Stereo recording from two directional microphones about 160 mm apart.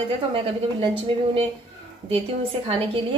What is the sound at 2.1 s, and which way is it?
Speech, 35° right (ahead or behind).